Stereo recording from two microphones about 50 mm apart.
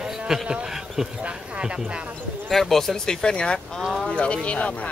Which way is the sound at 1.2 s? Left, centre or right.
Right.